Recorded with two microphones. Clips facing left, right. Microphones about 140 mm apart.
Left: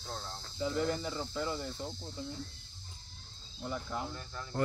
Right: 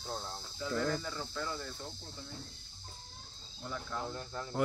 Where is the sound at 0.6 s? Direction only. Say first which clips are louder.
Left 2 dB; 20° left (ahead or behind).